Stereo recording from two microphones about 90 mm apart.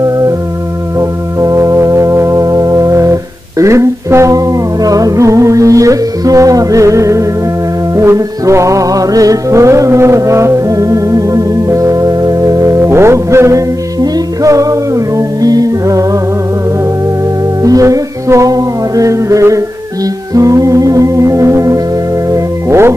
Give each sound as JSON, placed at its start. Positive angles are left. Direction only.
{"t": 0.9, "sound": "organ", "side_deg": -40}
{"t": 7.9, "sound": "music", "side_deg": -35}
{"t": 17.6, "sound": "music", "side_deg": -40}